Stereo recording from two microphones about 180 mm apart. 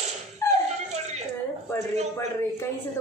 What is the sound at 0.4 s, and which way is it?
Dog, 15° left (ahead or behind).